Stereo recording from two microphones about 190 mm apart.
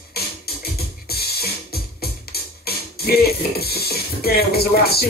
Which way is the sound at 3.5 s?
55° left (ahead or behind).